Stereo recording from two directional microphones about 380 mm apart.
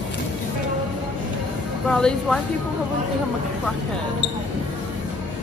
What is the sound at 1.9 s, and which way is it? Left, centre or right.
Speech, centre.